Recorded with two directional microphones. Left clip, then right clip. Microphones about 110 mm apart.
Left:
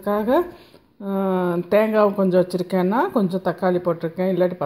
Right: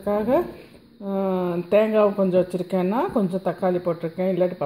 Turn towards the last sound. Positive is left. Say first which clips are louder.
# left 2 dB
turn(degrees=30)  # may be behind; listen again after turning